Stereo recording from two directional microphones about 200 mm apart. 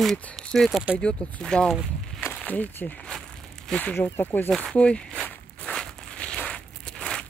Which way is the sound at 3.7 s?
5° left (ahead or behind).